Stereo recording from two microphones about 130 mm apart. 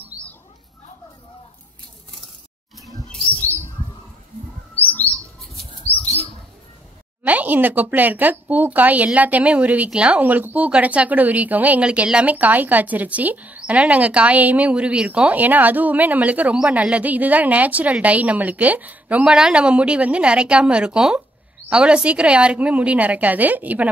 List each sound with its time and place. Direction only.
0.1 s rodents: 30° left (ahead or behind)
7.2 s speech: 10° right (ahead or behind)